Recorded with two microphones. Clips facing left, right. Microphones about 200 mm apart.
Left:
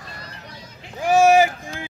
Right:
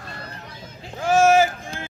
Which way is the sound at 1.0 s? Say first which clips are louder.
Left 1 dB; 15° left (ahead or behind).